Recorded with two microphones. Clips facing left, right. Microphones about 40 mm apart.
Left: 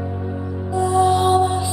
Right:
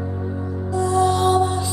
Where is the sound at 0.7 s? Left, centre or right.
Centre.